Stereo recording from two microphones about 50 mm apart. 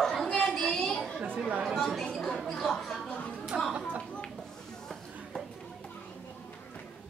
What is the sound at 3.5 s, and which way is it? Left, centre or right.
Speech, right.